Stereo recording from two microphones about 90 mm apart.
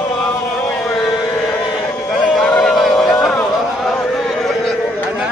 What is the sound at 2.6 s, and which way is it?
Music, centre (ahead or behind).